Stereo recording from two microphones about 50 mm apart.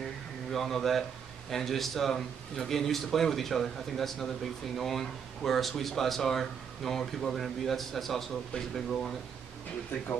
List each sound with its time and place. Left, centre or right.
0.5 s speech: centre